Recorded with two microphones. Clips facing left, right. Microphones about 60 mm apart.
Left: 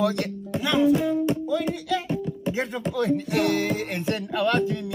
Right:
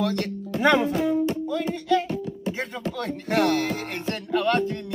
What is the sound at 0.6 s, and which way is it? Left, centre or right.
Speech, right.